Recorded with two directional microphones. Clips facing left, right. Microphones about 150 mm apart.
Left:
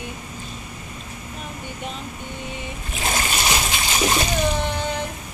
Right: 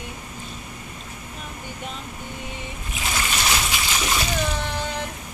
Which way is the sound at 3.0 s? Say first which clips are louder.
Left 3 dB; 40° left (ahead or behind).